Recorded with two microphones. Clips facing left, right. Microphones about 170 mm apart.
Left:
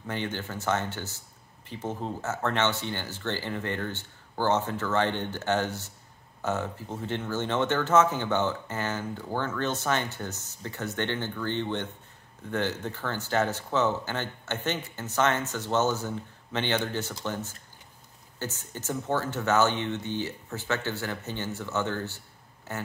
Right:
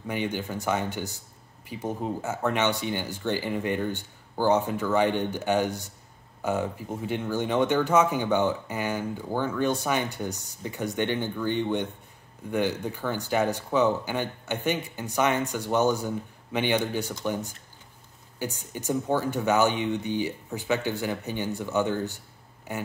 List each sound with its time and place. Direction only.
0.0 s speech: 15° right (ahead or behind)